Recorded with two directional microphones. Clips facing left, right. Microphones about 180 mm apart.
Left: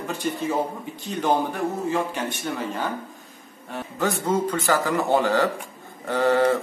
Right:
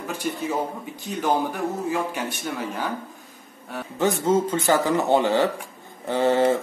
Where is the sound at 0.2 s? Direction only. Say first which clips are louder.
Left 1 dB; 10° right (ahead or behind).